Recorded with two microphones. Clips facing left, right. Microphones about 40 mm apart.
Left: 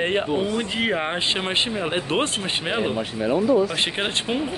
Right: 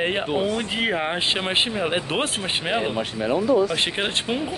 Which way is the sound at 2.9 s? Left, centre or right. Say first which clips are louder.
Left 1 dB; right.